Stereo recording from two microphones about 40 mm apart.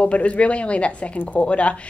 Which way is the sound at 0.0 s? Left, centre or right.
Left.